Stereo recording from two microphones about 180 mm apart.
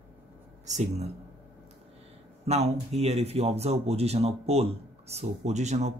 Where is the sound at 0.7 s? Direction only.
40° right (ahead or behind).